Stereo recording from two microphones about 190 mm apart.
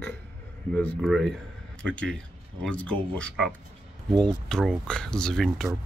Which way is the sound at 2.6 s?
5° left (ahead or behind).